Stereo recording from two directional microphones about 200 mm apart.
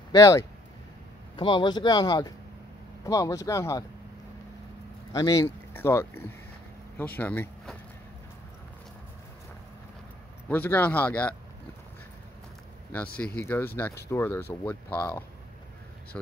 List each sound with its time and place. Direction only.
0.1 s speech: 15° left (ahead or behind)
5.1 s speech: 20° left (ahead or behind)
10.5 s speech: 10° left (ahead or behind)
13.2 s speech: 10° left (ahead or behind)